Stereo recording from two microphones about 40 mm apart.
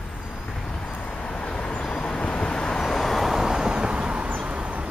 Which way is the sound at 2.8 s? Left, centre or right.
Centre.